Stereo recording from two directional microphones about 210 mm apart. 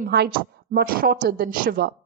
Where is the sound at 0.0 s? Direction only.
50° right (ahead or behind).